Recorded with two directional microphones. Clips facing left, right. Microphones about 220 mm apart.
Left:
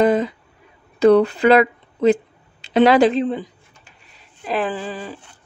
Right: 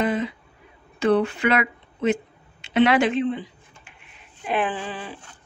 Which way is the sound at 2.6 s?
35° left (ahead or behind).